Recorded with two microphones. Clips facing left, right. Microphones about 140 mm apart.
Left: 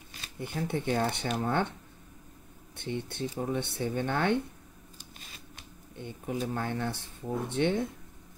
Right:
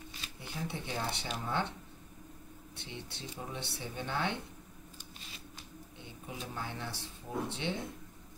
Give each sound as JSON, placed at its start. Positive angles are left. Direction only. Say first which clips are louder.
{"t": 0.4, "sound": "speech", "louder": "left 8 dB", "side_deg": 55}
{"t": 2.7, "sound": "speech", "louder": "left 11 dB", "side_deg": 55}
{"t": 5.9, "sound": "speech", "louder": "left 11 dB", "side_deg": 55}